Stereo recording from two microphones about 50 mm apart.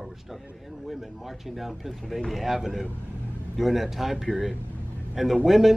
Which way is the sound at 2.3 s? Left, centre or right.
Centre.